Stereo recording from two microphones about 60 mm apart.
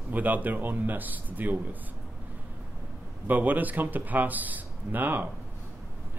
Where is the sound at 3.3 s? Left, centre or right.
Right.